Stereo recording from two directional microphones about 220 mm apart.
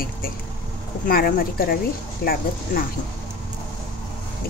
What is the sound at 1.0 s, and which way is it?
Speech, 40° left (ahead or behind).